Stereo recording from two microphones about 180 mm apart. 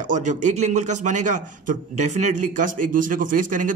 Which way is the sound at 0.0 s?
45° right (ahead or behind).